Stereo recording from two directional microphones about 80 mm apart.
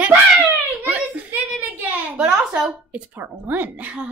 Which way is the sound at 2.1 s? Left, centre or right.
Centre.